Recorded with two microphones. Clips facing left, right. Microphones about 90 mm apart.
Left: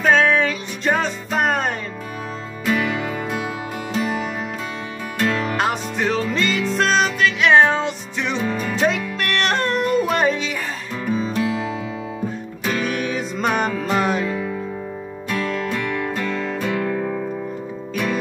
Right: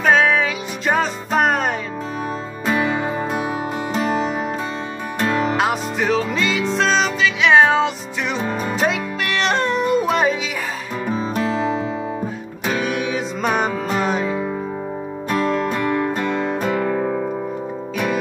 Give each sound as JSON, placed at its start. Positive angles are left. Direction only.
{"t": 0.0, "sound": "music", "side_deg": -5}
{"t": 2.6, "sound": "music", "side_deg": -30}
{"t": 5.2, "sound": "music", "side_deg": -25}
{"t": 5.6, "sound": "music", "side_deg": -5}
{"t": 11.1, "sound": "music", "side_deg": -35}
{"t": 12.8, "sound": "music", "side_deg": -5}
{"t": 15.2, "sound": "music", "side_deg": -30}